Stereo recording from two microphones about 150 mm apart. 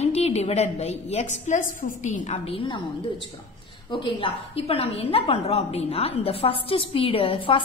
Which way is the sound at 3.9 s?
35° left (ahead or behind).